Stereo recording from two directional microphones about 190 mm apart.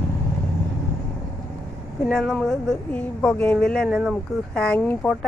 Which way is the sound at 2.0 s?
Centre (ahead or behind).